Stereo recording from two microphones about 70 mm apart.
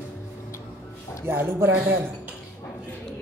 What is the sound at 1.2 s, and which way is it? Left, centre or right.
Speech, right.